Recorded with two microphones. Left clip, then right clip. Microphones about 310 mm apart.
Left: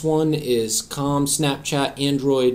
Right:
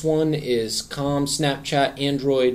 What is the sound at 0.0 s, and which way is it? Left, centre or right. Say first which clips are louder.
Speech: left 1 dB; left.